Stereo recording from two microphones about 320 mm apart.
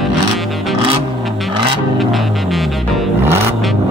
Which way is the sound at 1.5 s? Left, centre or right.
Centre.